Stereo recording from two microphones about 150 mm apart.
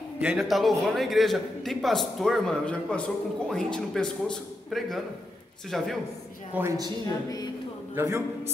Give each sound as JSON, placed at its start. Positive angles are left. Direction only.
{"t": 0.4, "sound": "a man's voice", "side_deg": 0}
{"t": 6.5, "sound": "a woman's voice", "side_deg": -10}
{"t": 7.9, "sound": "a man's voice", "side_deg": -20}